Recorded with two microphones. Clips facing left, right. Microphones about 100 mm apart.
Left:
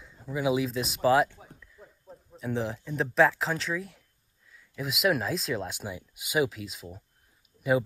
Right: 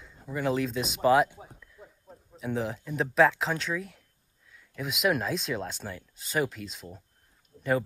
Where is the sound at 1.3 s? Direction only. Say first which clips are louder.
Right 3 dB; 15° right (ahead or behind).